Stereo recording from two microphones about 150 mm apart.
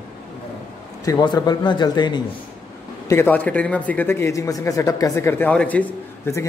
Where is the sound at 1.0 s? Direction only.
25° left (ahead or behind).